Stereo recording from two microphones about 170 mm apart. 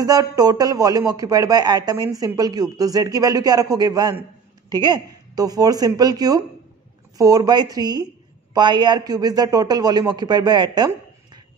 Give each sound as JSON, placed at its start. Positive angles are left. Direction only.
{"t": 0.0, "sound": "speech", "side_deg": -20}